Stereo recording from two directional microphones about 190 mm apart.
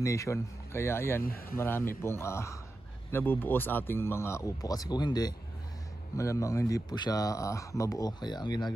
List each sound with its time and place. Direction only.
0.0 s speech: 15° left (ahead or behind)
1.2 s speech: 50° left (ahead or behind)
1.6 s speech: 10° left (ahead or behind)